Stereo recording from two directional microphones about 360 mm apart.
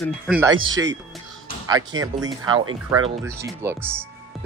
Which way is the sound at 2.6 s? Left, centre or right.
Right.